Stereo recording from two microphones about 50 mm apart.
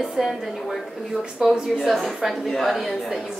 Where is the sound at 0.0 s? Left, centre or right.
Centre.